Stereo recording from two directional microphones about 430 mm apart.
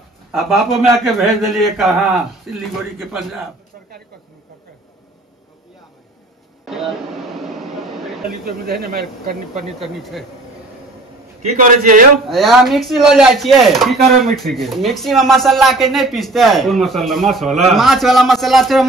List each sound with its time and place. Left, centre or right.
0.3 s speech: centre
6.6 s a sound: centre
8.5 s speech: right
9.8 s speech: centre
11.6 s a man's voice: centre
12.3 s speech: centre